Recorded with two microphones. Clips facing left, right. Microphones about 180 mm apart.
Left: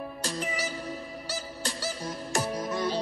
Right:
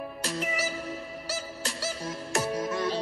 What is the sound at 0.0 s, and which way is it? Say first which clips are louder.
Music: right 1 dB; centre (ahead or behind).